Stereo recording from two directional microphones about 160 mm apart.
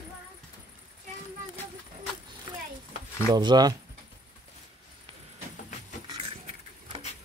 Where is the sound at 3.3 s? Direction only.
25° right (ahead or behind).